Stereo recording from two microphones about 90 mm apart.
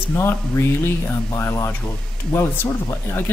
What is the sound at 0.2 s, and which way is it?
Speech, 25° left (ahead or behind).